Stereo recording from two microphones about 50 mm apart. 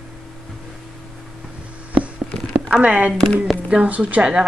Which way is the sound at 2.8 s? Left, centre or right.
Right.